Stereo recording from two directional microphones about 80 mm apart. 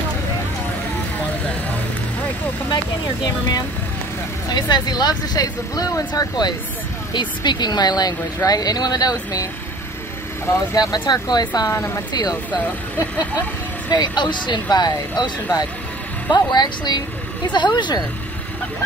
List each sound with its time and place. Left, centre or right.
4.5 s speech: left
7.2 s speech: left
10.7 s speech: left
11.7 s speech: left
12.1 s speech: left
13.8 s speech: left